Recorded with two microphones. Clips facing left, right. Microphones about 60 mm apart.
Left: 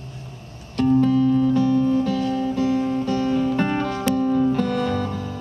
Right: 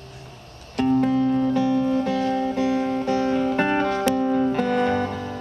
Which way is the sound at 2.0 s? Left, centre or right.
Right.